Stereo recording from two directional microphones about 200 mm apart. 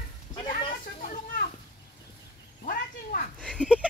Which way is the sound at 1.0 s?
40° left (ahead or behind).